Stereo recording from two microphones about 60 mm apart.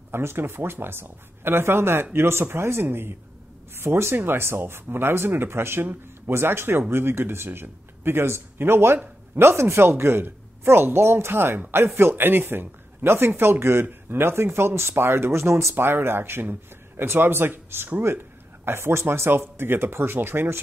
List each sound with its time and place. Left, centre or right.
0.1 s speech: right